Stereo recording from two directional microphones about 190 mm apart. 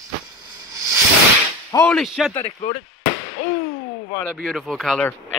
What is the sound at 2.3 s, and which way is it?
Speech, 35° left (ahead or behind).